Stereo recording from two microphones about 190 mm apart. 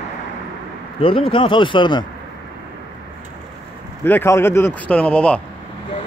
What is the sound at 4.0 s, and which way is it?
Speech, 10° left (ahead or behind).